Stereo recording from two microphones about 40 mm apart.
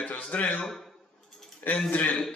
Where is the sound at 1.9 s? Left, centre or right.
Left.